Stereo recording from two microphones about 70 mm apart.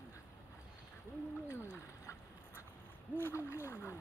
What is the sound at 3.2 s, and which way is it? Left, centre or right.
Speech, left.